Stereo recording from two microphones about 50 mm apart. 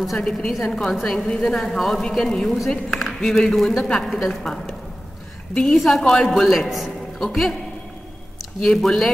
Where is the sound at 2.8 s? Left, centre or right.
Centre.